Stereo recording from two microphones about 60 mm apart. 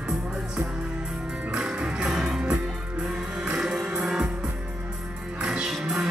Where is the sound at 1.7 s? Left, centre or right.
Centre.